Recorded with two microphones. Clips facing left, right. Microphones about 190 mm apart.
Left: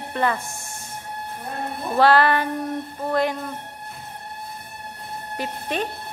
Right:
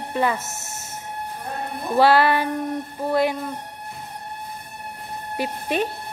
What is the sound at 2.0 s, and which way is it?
Speech, 10° right (ahead or behind).